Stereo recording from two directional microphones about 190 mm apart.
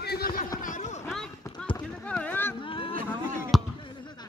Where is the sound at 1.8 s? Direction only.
5° left (ahead or behind).